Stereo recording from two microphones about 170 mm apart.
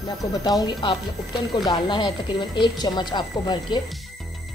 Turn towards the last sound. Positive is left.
turn(degrees=25)  # may be behind; listen again after turning